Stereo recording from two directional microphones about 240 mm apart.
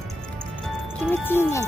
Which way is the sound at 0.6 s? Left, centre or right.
Centre.